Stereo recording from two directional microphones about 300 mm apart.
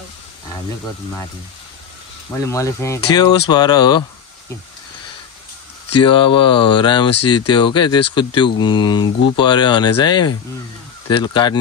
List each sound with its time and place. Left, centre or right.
2.4 s speech: centre
5.9 s speech: centre